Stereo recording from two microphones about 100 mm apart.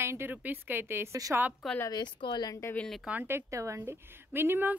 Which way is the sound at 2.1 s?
50° left (ahead or behind).